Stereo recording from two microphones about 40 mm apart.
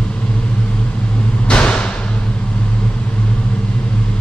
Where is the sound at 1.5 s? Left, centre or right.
Left.